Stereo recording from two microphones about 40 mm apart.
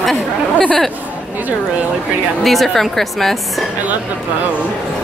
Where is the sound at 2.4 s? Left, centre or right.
Centre.